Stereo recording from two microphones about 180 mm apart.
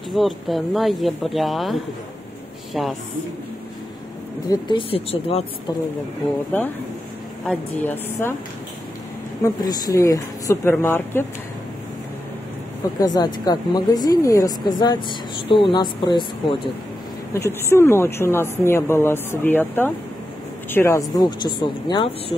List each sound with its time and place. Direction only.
0.1 s speech: centre (ahead or behind)
4.5 s speech: 25° left (ahead or behind)
7.4 s a woman's voice: 10° left (ahead or behind)
9.6 s a woman's voice: 20° left (ahead or behind)
13.0 s speech: 20° left (ahead or behind)
17.3 s a woman's voice: 15° left (ahead or behind)